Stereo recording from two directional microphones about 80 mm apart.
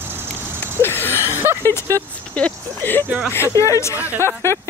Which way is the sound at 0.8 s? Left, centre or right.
Left.